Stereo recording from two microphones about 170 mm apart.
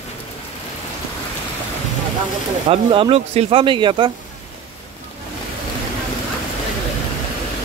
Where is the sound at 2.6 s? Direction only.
30° right (ahead or behind).